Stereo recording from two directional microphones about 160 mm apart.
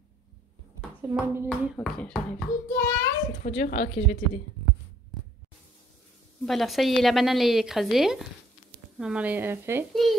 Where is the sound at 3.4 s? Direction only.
60° left (ahead or behind).